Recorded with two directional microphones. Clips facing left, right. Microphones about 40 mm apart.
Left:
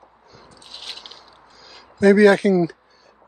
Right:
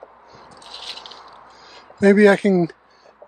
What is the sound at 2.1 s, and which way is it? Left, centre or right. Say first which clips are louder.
Speech: even; right.